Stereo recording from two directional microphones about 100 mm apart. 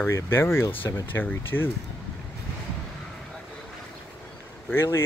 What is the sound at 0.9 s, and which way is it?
Speech, 30° left (ahead or behind).